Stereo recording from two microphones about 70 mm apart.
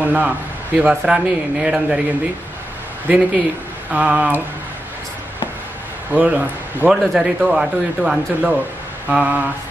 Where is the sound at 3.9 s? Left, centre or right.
Right.